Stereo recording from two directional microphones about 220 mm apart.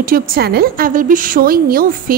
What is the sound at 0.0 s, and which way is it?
A woman's voice, 40° right (ahead or behind).